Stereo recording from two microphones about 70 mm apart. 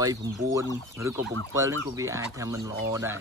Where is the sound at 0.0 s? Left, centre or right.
Right.